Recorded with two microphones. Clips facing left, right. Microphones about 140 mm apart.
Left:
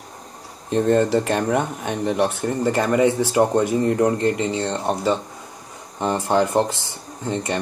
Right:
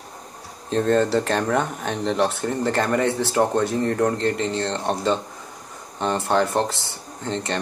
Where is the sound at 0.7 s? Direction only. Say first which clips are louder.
Left 2 dB; 15° left (ahead or behind).